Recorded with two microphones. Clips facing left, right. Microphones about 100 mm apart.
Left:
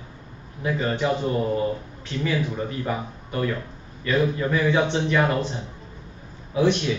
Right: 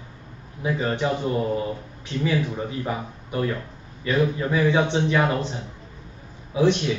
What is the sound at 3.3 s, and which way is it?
Speech, 15° right (ahead or behind).